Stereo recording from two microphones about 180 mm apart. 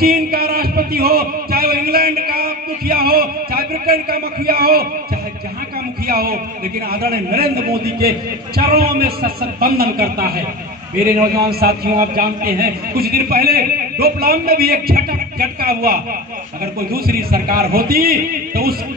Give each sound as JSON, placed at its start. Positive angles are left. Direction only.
{"t": 0.0, "sound": "a man's voice", "side_deg": -55}
{"t": 6.0, "sound": "a man's voice", "side_deg": -55}
{"t": 11.4, "sound": "a man's voice", "side_deg": -60}